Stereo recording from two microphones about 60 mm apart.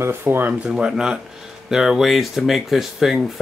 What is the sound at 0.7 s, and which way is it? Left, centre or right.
Speech, centre.